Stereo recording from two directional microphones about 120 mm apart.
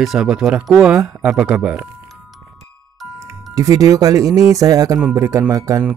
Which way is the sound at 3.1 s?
25° right (ahead or behind).